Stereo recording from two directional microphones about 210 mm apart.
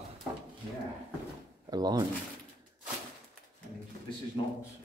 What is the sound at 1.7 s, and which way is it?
Speech, 20° right (ahead or behind).